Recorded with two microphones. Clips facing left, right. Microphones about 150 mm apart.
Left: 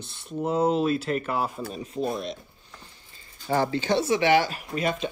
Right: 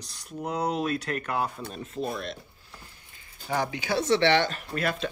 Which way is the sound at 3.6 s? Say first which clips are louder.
Left 5 dB; 15° right (ahead or behind).